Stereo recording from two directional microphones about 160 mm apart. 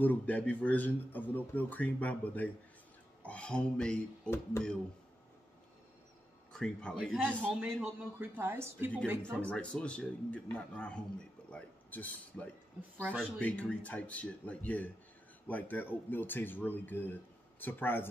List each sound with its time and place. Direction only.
0.0 s a man's voice: 10° left (ahead or behind)
6.5 s a man's voice: 5° left (ahead or behind)
7.4 s a man's voice: 5° right (ahead or behind)
9.5 s a man's voice: 5° left (ahead or behind)